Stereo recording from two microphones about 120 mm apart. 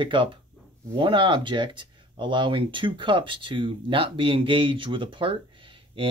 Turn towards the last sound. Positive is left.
turn(degrees=-45)  # may be behind; listen again after turning